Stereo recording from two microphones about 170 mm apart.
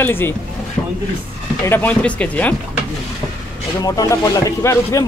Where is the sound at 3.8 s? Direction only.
20° left (ahead or behind).